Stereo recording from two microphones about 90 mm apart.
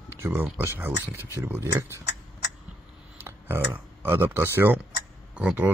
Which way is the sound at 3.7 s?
20° right (ahead or behind).